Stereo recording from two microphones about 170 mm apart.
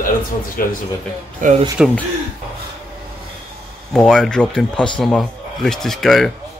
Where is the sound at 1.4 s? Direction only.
50° right (ahead or behind).